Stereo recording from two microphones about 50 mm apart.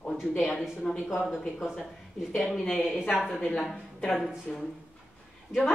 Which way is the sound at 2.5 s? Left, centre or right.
Centre.